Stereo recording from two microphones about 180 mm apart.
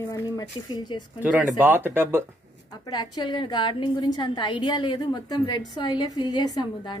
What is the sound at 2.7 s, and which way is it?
A woman's voice, 25° left (ahead or behind).